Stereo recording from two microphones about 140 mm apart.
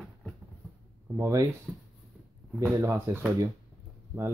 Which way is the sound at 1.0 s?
20° right (ahead or behind).